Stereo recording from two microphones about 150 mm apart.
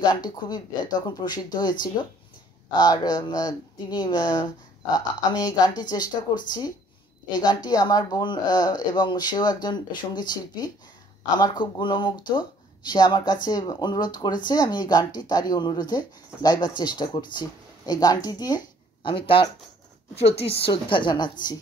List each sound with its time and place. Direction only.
0.0 s speech: 30° left (ahead or behind)
20.6 s a woman's voice: 35° left (ahead or behind)